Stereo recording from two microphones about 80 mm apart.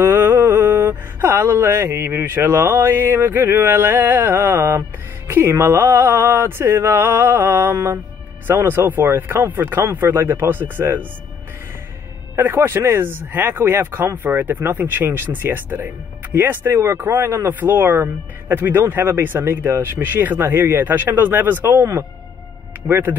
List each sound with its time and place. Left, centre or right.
0.0 s speech: right
5.3 s mantra: right
8.5 s speech: right
12.4 s speech: right
22.8 s mantra: right